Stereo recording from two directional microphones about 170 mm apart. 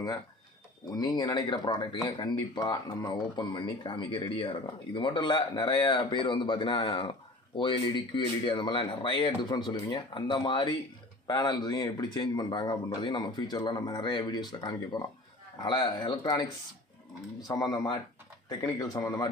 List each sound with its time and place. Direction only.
0.8 s speech: 25° left (ahead or behind)
17.5 s speech: 20° left (ahead or behind)